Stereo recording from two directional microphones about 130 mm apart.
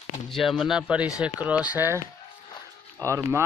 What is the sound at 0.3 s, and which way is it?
Speech, centre (ahead or behind).